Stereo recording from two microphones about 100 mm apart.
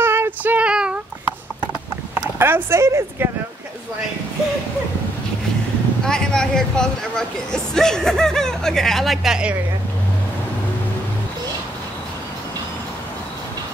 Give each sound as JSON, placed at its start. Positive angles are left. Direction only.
{"t": 0.0, "sound": "child singing", "side_deg": -25}
{"t": 2.3, "sound": "speech", "side_deg": -25}
{"t": 6.0, "sound": "speech", "side_deg": 5}